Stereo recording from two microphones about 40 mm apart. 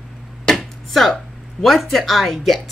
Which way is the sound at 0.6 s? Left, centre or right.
Centre.